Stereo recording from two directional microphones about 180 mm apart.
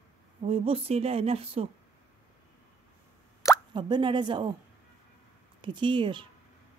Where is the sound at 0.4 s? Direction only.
30° right (ahead or behind).